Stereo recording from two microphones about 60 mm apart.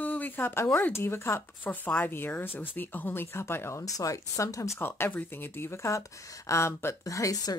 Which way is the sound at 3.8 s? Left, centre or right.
Left.